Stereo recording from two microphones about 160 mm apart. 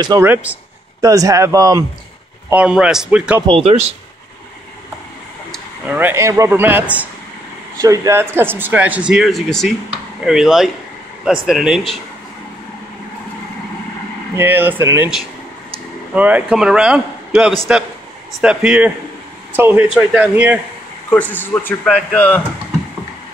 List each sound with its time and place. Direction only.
0.2 s speech: 10° right (ahead or behind)
1.0 s speech: 20° right (ahead or behind)
2.5 s speech: 5° right (ahead or behind)
3.4 s speech: 40° right (ahead or behind)
5.9 s speech: 10° right (ahead or behind)
7.8 s speech: 20° right (ahead or behind); by 12.0 s centre (ahead or behind)
14.3 s speech: 10° right (ahead or behind)
16.2 s speech: 10° right (ahead or behind)
21.1 s a man's voice: 10° left (ahead or behind)